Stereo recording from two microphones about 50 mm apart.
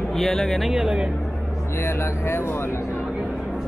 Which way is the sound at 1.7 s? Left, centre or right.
Left.